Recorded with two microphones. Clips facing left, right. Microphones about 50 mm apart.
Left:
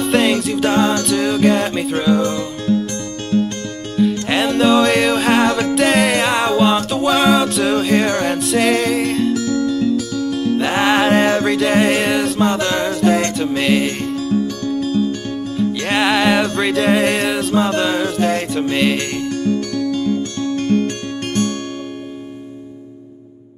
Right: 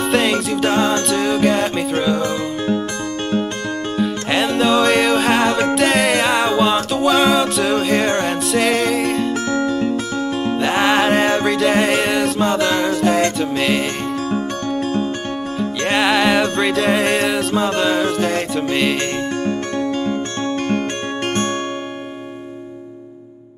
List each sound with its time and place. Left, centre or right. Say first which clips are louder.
0.0 s music: left 1 dB; centre
2.7 s music: left 4 dB; right
4.3 s music: even; centre
9.3 s music: left 1 dB; right
10.6 s music: even; centre
14.3 s music: left 2 dB; right
15.8 s music: right 1 dB; centre
19.4 s music: left 1 dB; right